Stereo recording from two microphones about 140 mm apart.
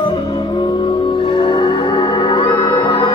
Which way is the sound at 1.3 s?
35° left (ahead or behind).